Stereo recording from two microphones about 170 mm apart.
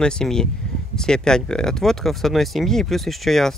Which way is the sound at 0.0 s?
5° left (ahead or behind).